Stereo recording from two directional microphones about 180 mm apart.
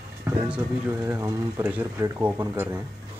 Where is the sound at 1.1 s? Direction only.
15° right (ahead or behind).